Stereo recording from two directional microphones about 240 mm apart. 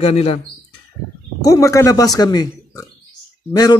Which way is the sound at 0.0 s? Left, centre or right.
Left.